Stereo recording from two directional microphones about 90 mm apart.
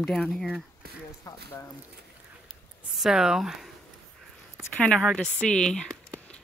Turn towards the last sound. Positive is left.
turn(degrees=5)  # may be behind; listen again after turning